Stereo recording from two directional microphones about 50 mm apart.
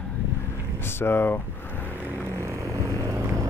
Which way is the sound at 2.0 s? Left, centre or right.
Right.